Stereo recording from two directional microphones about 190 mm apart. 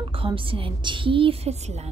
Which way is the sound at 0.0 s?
25° right (ahead or behind).